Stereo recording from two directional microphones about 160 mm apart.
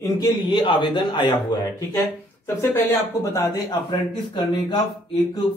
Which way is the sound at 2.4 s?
15° left (ahead or behind).